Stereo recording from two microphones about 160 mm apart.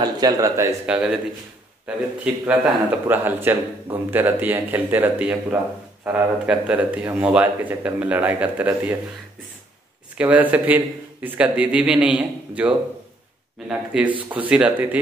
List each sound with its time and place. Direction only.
0.0 s speech: 25° right (ahead or behind)
0.8 s speech: 5° right (ahead or behind)
2.2 s a man's voice: 5° right (ahead or behind)
10.1 s a man's voice: 10° right (ahead or behind)